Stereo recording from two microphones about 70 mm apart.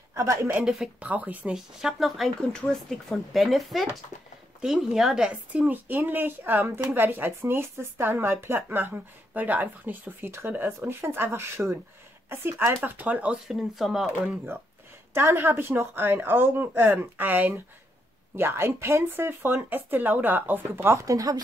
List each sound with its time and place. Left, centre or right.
0.1 s a woman's voice: right
0.9 s speech: right
1.5 s speech: centre
5.5 s speech: right
10.9 s speech: right
13.5 s speech: centre
14.5 s speech: right
21.0 s speech: right